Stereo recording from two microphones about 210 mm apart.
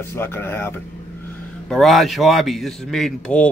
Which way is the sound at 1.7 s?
Centre (ahead or behind).